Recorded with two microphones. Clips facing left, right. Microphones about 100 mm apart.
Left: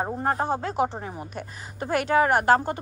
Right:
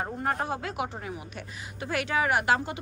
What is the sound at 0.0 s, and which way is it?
A woman's voice, 30° left (ahead or behind).